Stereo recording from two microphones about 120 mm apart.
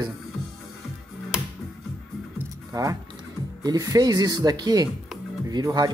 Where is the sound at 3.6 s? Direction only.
30° right (ahead or behind).